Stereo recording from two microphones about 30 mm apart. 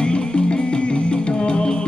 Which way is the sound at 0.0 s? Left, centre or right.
Left.